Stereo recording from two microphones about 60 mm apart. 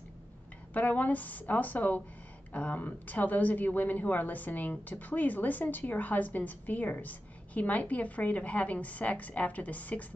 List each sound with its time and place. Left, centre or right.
0.7 s speech: left